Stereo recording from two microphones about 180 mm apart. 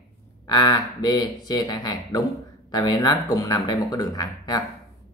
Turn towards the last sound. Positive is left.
turn(degrees=20)  # may be behind; listen again after turning